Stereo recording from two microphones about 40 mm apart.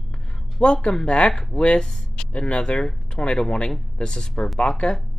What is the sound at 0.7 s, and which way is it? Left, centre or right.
Speech, centre.